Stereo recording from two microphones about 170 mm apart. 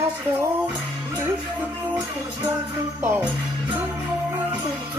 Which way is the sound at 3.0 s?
15° right (ahead or behind).